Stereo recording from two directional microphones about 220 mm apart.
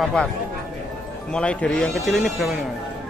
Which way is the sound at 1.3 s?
5° left (ahead or behind).